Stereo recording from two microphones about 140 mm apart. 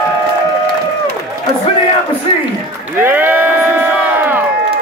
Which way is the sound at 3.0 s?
15° right (ahead or behind).